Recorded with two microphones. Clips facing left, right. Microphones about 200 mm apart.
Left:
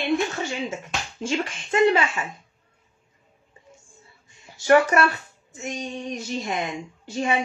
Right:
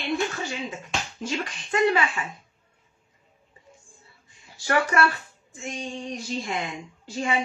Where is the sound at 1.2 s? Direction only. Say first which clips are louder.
Left 7 dB; 25° left (ahead or behind).